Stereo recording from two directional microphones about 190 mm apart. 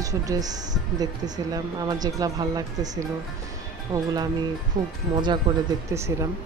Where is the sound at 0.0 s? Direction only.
20° right (ahead or behind).